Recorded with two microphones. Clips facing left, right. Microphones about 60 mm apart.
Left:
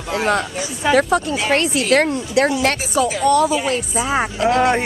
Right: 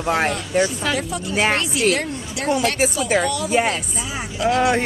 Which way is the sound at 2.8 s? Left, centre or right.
Right.